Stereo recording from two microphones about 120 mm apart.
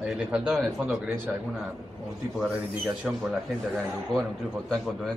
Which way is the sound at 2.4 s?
Centre (ahead or behind).